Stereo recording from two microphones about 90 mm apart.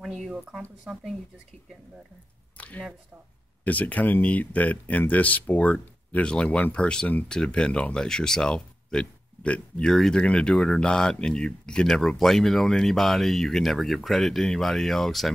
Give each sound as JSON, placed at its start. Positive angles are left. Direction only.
{"t": 0.0, "sound": "speech", "side_deg": 0}
{"t": 2.5, "sound": "a sound", "side_deg": 15}
{"t": 3.6, "sound": "speech", "side_deg": 15}